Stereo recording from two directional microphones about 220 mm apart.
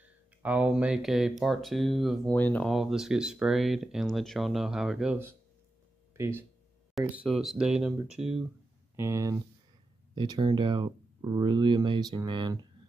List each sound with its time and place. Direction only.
0.0 s speech: 5° right (ahead or behind)
7.0 s speech: centre (ahead or behind)
8.9 s speech: 10° right (ahead or behind)